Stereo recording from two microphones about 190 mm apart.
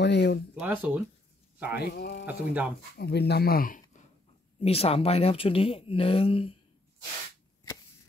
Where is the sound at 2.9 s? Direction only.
60° left (ahead or behind).